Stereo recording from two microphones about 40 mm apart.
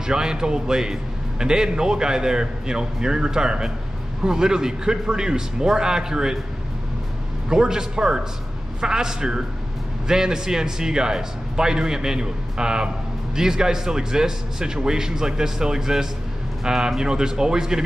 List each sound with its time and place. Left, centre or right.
0.0 s a man's voice: centre
7.4 s a man's voice: centre